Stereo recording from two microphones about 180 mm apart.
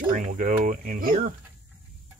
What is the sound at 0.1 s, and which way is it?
Speech, 45° right (ahead or behind).